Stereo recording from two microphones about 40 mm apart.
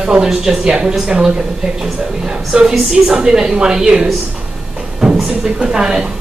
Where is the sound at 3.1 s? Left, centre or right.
Centre.